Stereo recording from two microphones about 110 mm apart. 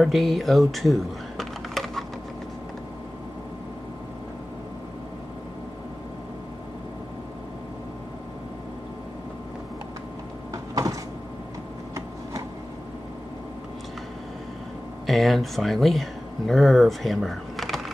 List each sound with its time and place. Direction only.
0.0 s speech: centre (ahead or behind)
10.5 s cupboard open or close: 30° right (ahead or behind)
15.0 s speech: centre (ahead or behind)